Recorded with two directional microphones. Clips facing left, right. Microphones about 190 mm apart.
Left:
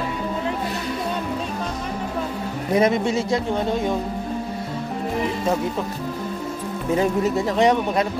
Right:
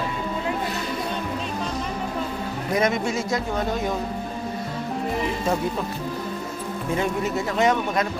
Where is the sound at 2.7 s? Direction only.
30° left (ahead or behind).